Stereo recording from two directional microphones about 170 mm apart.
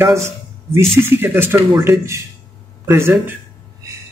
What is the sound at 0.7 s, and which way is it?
Speech, 15° right (ahead or behind).